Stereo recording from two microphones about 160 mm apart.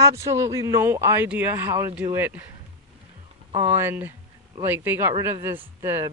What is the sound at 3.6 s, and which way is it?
A man's voice, 15° right (ahead or behind).